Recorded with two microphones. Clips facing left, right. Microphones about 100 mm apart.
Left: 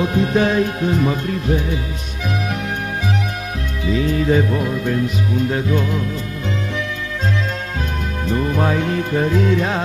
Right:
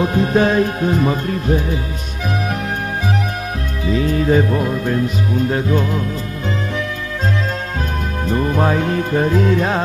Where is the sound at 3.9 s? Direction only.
40° right (ahead or behind).